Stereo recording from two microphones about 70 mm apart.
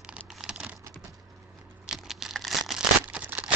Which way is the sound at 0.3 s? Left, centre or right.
Centre.